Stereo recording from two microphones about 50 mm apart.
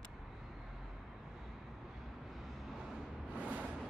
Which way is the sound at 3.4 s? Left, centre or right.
Right.